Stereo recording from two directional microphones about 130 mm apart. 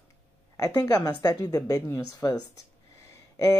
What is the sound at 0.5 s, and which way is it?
Speech, 30° left (ahead or behind).